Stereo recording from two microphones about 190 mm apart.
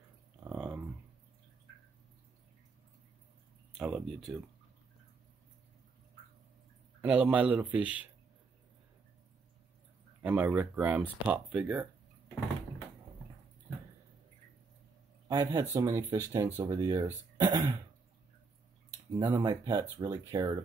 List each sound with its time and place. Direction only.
0.4 s a sound: 5° right (ahead or behind)
3.7 s speech: 5° right (ahead or behind)
7.0 s speech: 10° right (ahead or behind)
10.2 s speech: 10° right (ahead or behind)
15.2 s speech: 20° right (ahead or behind)
19.1 s speech: 20° right (ahead or behind)